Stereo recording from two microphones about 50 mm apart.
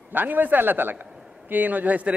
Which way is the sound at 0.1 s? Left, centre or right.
Right.